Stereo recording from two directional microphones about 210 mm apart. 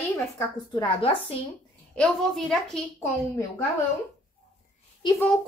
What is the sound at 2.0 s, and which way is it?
Speech, centre (ahead or behind).